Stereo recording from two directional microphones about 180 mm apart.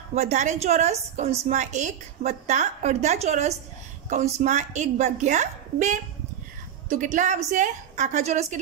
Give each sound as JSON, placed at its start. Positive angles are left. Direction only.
{"t": 0.1, "sound": "a woman's voice", "side_deg": -40}